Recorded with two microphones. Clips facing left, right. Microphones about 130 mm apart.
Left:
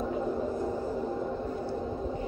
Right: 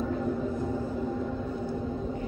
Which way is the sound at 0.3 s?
25° left (ahead or behind).